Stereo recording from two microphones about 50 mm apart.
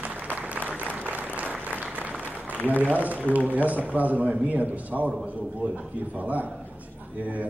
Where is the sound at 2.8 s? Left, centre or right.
Right.